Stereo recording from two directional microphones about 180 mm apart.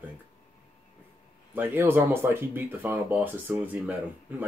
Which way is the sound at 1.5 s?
10° right (ahead or behind).